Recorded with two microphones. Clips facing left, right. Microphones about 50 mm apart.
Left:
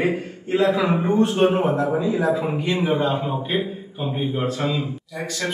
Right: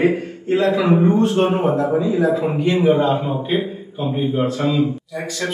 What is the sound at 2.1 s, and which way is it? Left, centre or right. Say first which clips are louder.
Speech: right 3 dB; centre.